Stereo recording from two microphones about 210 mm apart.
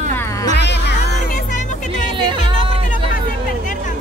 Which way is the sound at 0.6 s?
55° left (ahead or behind).